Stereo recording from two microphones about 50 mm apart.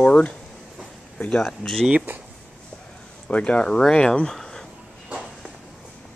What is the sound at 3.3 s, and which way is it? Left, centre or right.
Speech, left.